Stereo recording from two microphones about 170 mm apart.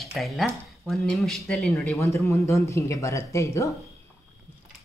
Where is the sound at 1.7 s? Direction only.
15° left (ahead or behind).